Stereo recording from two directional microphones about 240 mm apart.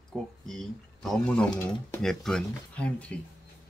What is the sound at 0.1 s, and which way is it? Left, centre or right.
Speech, centre.